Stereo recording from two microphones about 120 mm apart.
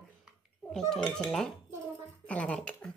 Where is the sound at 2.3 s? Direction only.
10° left (ahead or behind).